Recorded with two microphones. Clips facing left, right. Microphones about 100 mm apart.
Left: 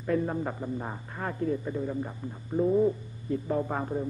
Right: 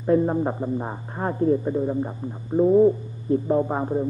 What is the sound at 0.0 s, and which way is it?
A man's voice, 30° right (ahead or behind).